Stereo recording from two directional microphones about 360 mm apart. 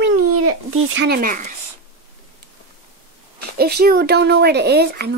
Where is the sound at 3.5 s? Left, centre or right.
Right.